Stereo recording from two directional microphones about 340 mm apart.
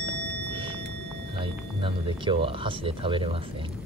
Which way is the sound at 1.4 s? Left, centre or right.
Centre.